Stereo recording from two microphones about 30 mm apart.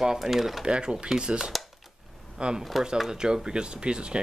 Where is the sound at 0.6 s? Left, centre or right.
Right.